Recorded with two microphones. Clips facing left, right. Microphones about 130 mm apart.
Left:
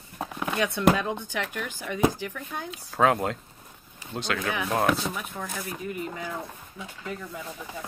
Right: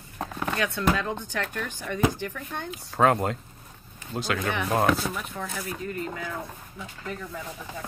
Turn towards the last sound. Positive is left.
turn(degrees=0)  # may be behind; listen again after turning